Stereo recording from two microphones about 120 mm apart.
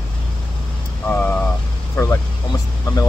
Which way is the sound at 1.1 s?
15° left (ahead or behind).